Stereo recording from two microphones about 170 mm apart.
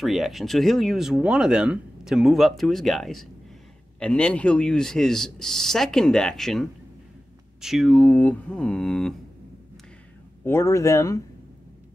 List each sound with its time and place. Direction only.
0.0 s speech: centre (ahead or behind)
10.4 s speech: 15° left (ahead or behind)